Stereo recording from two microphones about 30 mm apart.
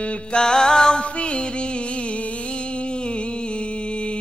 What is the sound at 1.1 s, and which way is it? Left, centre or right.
Music, left.